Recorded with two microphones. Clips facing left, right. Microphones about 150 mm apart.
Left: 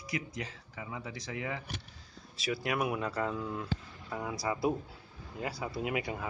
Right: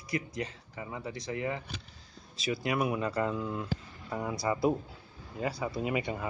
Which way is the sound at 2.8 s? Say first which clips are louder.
Right 3 dB; centre (ahead or behind).